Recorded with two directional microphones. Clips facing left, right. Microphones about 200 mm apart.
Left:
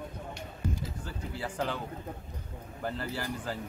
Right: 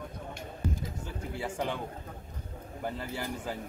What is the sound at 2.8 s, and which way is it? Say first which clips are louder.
Speech: left 1 dB; 15° right (ahead or behind).